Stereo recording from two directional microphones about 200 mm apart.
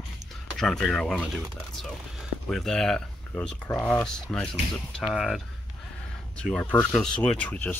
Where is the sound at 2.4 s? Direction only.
Centre (ahead or behind).